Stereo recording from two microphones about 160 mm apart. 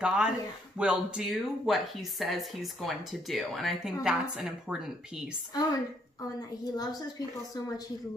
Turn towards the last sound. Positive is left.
turn(degrees=25)  # may be behind; listen again after turning